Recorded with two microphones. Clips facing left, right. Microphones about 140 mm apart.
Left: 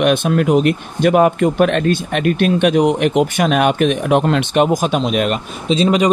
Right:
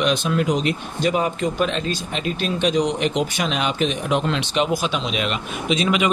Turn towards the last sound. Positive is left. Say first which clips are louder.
# left 6 dB
turn(degrees=35)  # may be behind; listen again after turning